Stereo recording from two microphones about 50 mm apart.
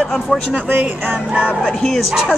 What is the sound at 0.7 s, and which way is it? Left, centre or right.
Speech, right.